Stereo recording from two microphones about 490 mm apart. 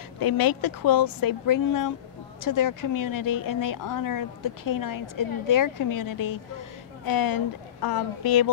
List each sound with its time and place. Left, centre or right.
0.2 s a woman's voice: left